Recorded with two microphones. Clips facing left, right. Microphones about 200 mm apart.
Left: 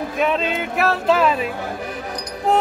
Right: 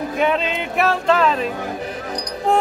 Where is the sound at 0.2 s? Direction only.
Centre (ahead or behind).